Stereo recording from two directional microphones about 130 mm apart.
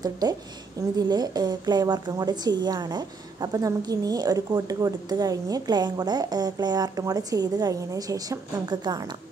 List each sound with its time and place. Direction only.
0.0 s a woman's voice: 30° right (ahead or behind)